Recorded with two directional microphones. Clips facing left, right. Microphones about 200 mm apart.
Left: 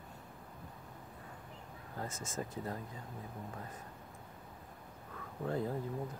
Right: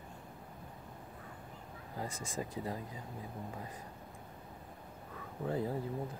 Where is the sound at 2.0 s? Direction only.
15° right (ahead or behind).